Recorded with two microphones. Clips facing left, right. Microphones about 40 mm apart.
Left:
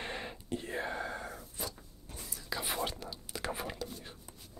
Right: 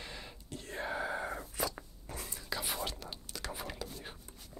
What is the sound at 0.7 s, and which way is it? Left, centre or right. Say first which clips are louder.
Whispering: right 4 dB; centre.